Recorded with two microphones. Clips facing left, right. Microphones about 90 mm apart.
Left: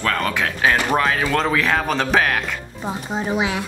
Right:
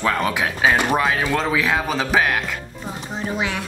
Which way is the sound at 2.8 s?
20° left (ahead or behind).